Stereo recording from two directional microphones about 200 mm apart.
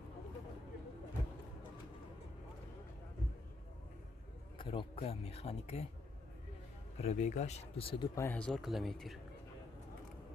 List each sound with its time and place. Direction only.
4.6 s speech: 25° left (ahead or behind)
7.0 s speech: 35° left (ahead or behind); by 9.2 s centre (ahead or behind)